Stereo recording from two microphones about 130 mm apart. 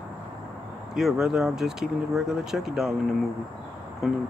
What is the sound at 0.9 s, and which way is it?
Speech, 5° right (ahead or behind).